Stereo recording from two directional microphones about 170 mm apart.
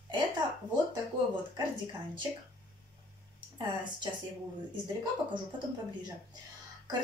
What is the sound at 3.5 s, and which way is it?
Speech, 25° right (ahead or behind).